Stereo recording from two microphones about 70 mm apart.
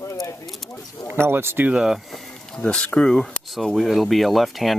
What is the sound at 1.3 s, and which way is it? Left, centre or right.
Speech, right.